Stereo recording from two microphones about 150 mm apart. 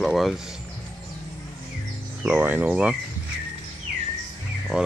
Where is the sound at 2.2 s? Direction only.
10° right (ahead or behind).